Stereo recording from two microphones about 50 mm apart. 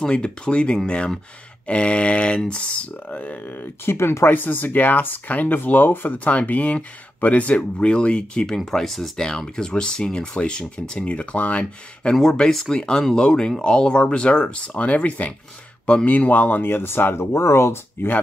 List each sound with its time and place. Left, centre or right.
0.0 s speech: left
3.9 s speech: left
4.3 s speech: left
8.6 s speech: centre; by 12.2 s left
12.2 s speech: centre; by 18.1 s left